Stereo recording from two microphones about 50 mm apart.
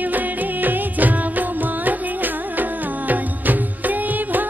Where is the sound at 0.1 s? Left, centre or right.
Right.